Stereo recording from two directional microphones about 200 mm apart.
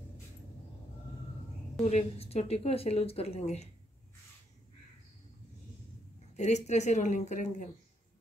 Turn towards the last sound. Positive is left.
turn(degrees=35)  # may be behind; listen again after turning